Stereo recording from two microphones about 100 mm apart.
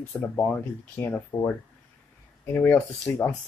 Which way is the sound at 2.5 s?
25° left (ahead or behind).